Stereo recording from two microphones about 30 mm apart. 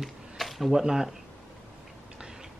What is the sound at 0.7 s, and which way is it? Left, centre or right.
Speech, centre.